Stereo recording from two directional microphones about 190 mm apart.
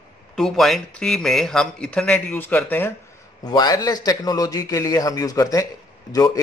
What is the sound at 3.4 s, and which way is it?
A man's voice, 20° left (ahead or behind).